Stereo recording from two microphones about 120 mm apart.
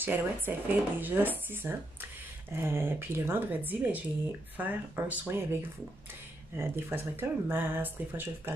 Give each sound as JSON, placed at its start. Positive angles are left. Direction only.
{"t": 0.0, "sound": "speech", "side_deg": -15}